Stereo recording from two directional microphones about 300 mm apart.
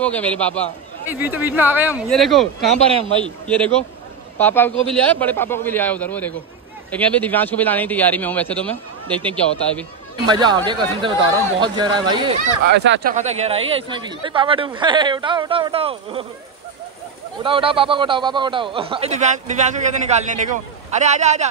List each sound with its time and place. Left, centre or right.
0.0 s a man's voice: centre
1.0 s a man's voice: centre
10.3 s a woman's voice: centre
12.6 s speech: right
13.1 s a woman's voice: right
17.4 s a woman's voice: centre